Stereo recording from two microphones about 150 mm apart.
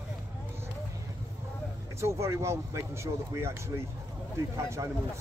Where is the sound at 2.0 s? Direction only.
20° right (ahead or behind).